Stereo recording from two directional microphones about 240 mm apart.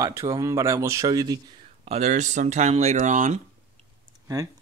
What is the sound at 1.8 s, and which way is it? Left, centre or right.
Speech, right.